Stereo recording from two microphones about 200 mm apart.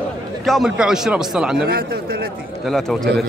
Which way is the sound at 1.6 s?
50° right (ahead or behind).